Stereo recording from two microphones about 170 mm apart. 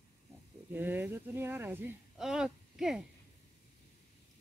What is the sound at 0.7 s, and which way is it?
Speech, 10° right (ahead or behind).